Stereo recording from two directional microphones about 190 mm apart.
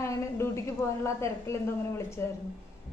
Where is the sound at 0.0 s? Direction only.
15° left (ahead or behind).